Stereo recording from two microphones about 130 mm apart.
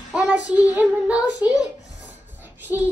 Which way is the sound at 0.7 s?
10° right (ahead or behind).